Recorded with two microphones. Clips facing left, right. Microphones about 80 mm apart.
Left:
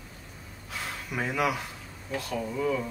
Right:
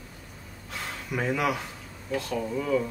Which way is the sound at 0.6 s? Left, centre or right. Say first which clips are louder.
Right 1 dB; centre.